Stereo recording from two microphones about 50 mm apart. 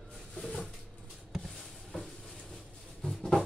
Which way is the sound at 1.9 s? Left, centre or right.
Centre.